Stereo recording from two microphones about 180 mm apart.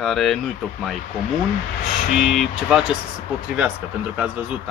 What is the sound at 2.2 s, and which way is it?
Speech, centre (ahead or behind).